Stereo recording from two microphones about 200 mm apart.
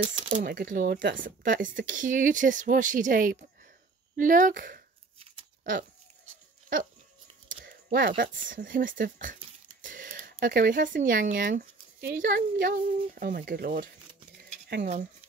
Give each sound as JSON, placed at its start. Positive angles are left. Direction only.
{"t": 0.3, "sound": "speech", "side_deg": -50}
{"t": 7.4, "sound": "a sound", "side_deg": -45}
{"t": 8.2, "sound": "speech", "side_deg": -45}